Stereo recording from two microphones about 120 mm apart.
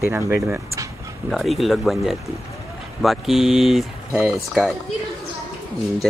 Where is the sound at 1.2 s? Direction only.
Centre (ahead or behind).